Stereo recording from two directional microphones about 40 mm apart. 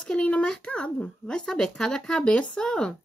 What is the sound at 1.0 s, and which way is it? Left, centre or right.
Speech, centre.